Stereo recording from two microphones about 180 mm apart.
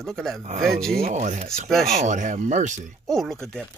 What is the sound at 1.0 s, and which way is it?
Speech, 40° right (ahead or behind).